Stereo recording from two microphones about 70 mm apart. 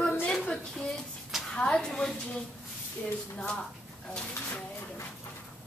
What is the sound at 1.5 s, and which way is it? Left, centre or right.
Speech, centre.